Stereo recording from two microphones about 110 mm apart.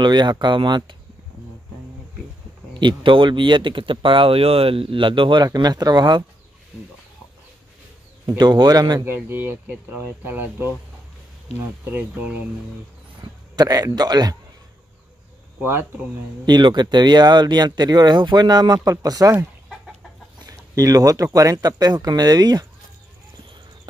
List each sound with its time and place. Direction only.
0.0 s speech: 45° right (ahead or behind)
2.7 s speech: 45° right (ahead or behind)
8.3 s speech: 40° right (ahead or behind)
9.0 s speech: 20° right (ahead or behind)
13.2 s a man's voice: 35° right (ahead or behind)
16.4 s speech: 40° right (ahead or behind)
20.3 s speech: 35° right (ahead or behind)